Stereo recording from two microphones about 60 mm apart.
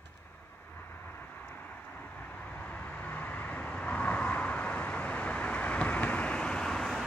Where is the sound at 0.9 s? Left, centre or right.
Left.